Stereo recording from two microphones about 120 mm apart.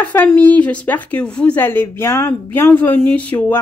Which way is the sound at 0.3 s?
15° left (ahead or behind).